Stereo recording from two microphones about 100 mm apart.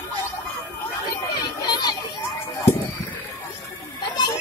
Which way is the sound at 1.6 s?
45° left (ahead or behind).